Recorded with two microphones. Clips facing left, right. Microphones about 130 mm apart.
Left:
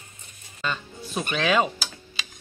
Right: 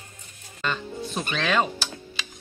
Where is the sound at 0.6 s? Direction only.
5° left (ahead or behind).